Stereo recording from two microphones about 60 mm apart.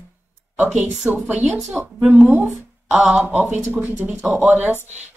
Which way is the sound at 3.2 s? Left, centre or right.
Right.